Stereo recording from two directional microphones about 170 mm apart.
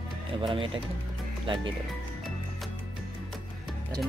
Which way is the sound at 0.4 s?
30° right (ahead or behind).